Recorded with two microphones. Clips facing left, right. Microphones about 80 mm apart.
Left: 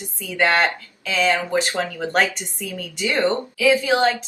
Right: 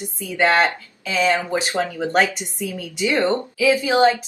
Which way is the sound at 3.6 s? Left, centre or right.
Centre.